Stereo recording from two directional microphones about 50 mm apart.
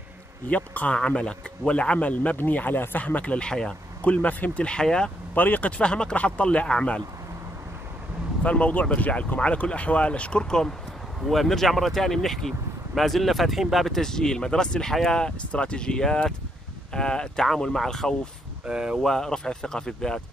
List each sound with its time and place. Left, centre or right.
0.5 s a man's voice: left
2.3 s speech: left
3.3 s speech: centre
4.0 s a man's voice: left
4.6 s speech: centre
5.3 s a man's voice: left
8.4 s a man's voice: left
11.2 s speech: centre
18.7 s speech: centre
19.0 s speech: centre